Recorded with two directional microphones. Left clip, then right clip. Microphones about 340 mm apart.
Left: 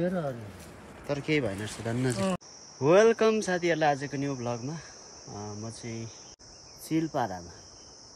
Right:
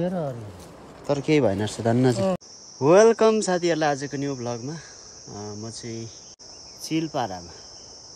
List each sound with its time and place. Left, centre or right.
0.0 s speech: centre